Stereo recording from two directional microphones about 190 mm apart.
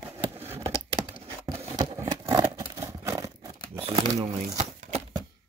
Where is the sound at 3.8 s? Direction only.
30° right (ahead or behind).